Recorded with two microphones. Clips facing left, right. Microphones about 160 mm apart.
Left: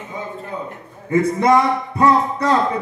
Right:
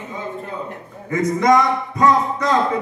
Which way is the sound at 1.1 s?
30° left (ahead or behind).